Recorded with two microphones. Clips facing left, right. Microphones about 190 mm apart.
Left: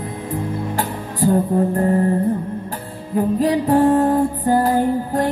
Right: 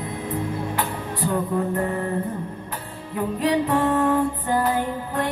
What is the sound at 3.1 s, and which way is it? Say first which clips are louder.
Music: left 5 dB; 40° left (ahead or behind).